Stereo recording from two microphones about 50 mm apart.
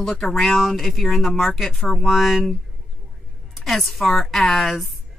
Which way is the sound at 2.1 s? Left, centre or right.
Centre.